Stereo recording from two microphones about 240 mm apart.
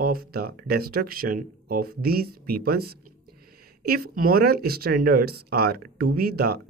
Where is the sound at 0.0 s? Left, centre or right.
Right.